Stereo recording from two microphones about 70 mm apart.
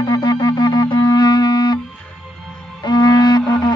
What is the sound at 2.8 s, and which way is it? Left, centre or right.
Music, left.